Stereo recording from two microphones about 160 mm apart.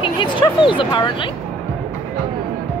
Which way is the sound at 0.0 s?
30° left (ahead or behind).